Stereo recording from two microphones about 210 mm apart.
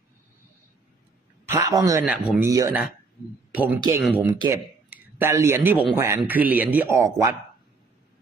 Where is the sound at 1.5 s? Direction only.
15° right (ahead or behind).